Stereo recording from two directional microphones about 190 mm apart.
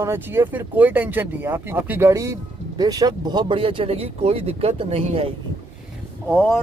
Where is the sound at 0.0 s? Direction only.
15° right (ahead or behind); by 5.3 s 30° right (ahead or behind).